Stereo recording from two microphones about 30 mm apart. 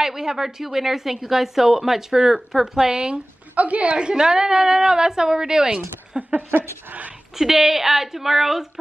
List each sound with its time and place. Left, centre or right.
0.0 s speech: centre
3.5 s a woman's voice: right
3.9 s a woman's voice: right
6.1 s a sound: right
7.3 s speech: centre